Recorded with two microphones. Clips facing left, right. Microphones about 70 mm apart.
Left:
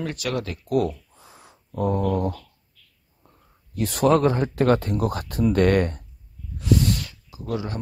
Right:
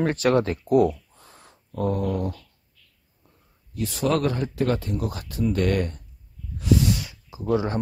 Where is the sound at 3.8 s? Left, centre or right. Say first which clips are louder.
Left 3 dB; left.